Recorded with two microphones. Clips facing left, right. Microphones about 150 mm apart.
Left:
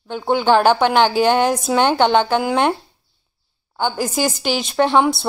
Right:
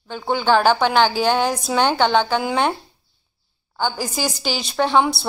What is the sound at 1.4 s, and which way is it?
A woman's voice, centre (ahead or behind).